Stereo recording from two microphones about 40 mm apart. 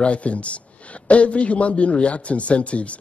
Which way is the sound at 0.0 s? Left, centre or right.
Left.